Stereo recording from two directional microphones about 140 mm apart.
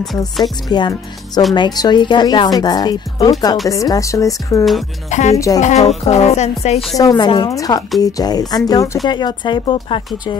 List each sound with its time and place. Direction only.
0.7 s speech: 30° left (ahead or behind)
5.1 s speech: 60° left (ahead or behind)
7.0 s speech: 30° left (ahead or behind)